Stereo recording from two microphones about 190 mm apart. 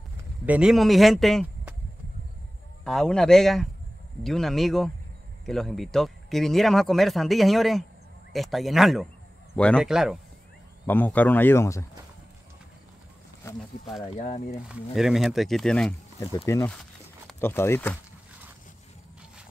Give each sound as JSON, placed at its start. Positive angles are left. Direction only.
{"t": 0.2, "sound": "speech", "side_deg": -5}
{"t": 2.8, "sound": "speech", "side_deg": 0}
{"t": 10.9, "sound": "speech", "side_deg": 10}
{"t": 13.6, "sound": "speech", "side_deg": 0}
{"t": 14.2, "sound": "speech", "side_deg": 40}
{"t": 14.7, "sound": "speech", "side_deg": 0}
{"t": 16.4, "sound": "speech", "side_deg": 15}